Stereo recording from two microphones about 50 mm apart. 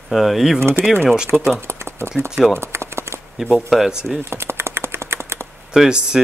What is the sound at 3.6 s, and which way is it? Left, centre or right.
Speech, centre.